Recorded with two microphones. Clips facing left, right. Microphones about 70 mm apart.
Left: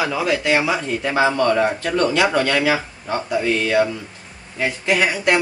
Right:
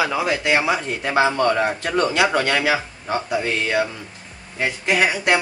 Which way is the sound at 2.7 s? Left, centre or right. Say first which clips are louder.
Even; centre.